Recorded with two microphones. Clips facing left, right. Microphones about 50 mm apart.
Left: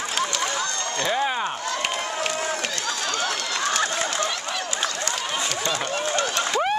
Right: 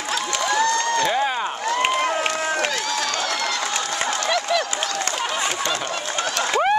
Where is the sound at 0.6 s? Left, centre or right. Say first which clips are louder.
Right 8 dB; right.